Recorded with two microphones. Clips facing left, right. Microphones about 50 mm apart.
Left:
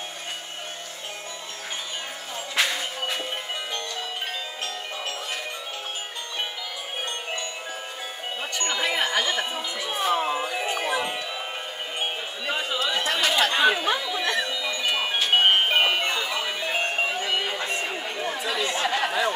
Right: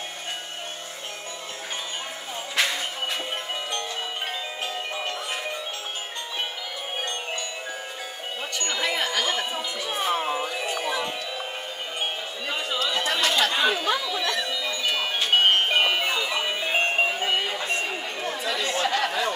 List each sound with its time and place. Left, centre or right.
2.5 s music: centre
8.5 s wind chime: centre
9.8 s wind chime: centre
10.1 s music: centre
10.4 s music: centre
12.4 s chatter: centre
13.6 s music: centre
16.1 s music: centre
16.3 s music: right
18.2 s chatter: centre